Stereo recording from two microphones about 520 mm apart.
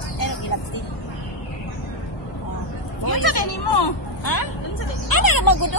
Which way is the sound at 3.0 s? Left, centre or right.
Left.